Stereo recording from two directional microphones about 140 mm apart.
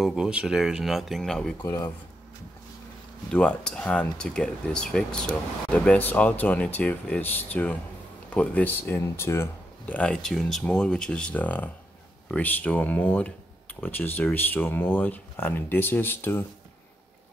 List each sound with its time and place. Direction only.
0.0 s speech: 5° right (ahead or behind)
1.6 s speech: 25° left (ahead or behind)
3.3 s speech: 5° left (ahead or behind)